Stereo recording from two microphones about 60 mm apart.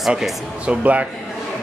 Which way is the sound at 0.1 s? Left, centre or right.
Centre.